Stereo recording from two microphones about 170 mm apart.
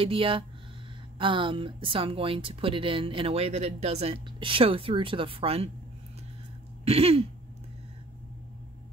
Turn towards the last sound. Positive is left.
turn(degrees=-35)  # may be behind; listen again after turning